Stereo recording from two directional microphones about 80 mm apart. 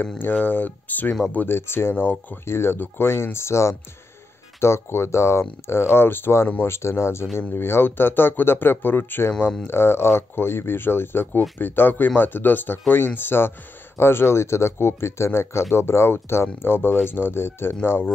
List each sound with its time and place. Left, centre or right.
0.2 s speech: left